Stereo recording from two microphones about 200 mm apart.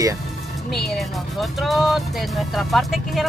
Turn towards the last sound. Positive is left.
turn(degrees=0)  # may be behind; listen again after turning